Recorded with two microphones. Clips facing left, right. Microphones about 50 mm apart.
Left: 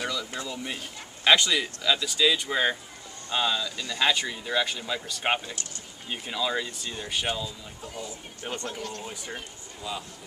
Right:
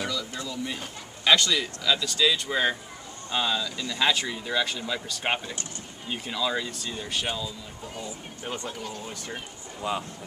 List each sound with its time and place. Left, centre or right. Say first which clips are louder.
0.0 s a sound: even; centre
1.2 s speech: left 1 dB; centre
8.5 s speech: even; centre
9.0 s speech: even; centre
9.8 s speech: right 6 dB; right